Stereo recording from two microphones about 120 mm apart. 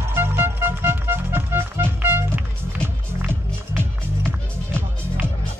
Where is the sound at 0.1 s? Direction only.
20° right (ahead or behind).